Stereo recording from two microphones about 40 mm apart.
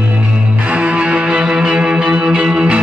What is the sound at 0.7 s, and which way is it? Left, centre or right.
Music, right.